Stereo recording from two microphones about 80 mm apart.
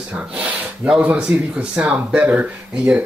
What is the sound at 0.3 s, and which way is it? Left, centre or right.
Speech, centre.